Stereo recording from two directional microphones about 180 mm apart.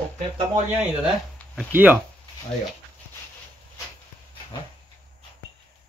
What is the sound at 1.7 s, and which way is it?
Speech, 10° right (ahead or behind).